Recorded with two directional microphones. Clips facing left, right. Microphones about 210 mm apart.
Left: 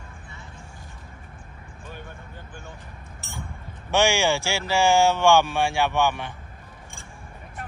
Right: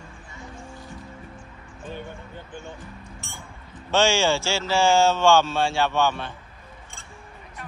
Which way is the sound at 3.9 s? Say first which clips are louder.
Right 1 dB; 15° left (ahead or behind).